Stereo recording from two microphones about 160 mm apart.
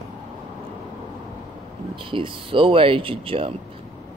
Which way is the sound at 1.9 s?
30° right (ahead or behind).